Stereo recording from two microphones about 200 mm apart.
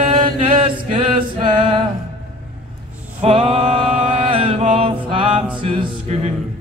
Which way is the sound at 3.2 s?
25° right (ahead or behind).